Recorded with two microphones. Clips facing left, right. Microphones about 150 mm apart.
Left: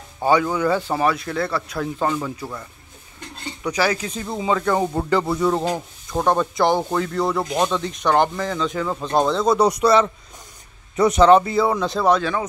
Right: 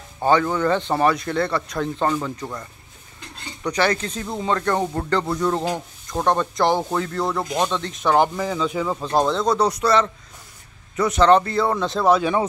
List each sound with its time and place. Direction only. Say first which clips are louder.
0.2 s speech: even; 10° left (ahead or behind)
3.6 s speech: even; 10° left (ahead or behind)
11.2 s speech: even; 10° left (ahead or behind)